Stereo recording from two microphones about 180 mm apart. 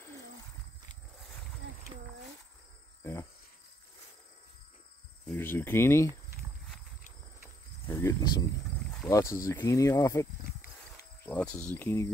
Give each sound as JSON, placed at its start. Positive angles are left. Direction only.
{"t": 3.0, "sound": "cricket", "side_deg": 15}
{"t": 5.3, "sound": "speech", "side_deg": 10}
{"t": 7.9, "sound": "speech", "side_deg": 20}
{"t": 11.2, "sound": "speech", "side_deg": 10}